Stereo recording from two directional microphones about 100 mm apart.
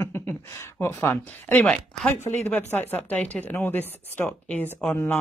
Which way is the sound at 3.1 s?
10° left (ahead or behind).